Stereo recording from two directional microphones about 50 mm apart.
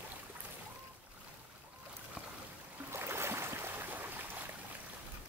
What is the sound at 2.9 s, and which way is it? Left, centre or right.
Boat, right.